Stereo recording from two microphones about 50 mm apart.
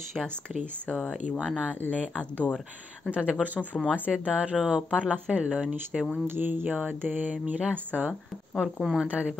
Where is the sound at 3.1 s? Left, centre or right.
Right.